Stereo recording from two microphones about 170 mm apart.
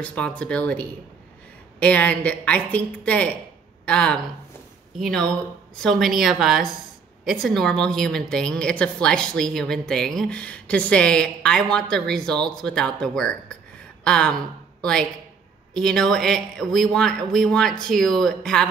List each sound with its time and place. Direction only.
0.0 s a woman's voice: 5° left (ahead or behind)
5.8 s a woman's voice: centre (ahead or behind)